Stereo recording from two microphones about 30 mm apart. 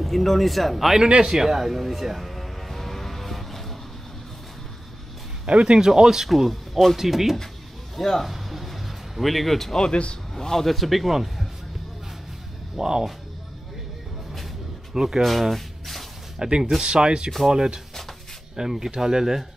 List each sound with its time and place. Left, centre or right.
0.0 s speech: centre
1.3 s speech: centre
2.2 s music: centre
5.5 s speech: right
5.8 s speech: centre
6.2 s speech: centre
7.9 s a man's voice: centre
10.8 s speech: centre
12.7 s speech: right
15.0 s speech: centre
15.5 s a sound: centre
16.3 s speech: right
18.6 s speech: centre